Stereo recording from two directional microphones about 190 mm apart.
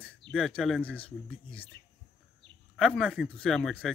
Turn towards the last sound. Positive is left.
turn(degrees=5)  # may be behind; listen again after turning